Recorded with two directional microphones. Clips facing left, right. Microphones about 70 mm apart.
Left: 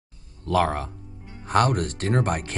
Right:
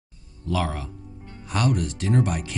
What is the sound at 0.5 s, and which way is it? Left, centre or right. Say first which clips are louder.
Speech: left 5 dB; left.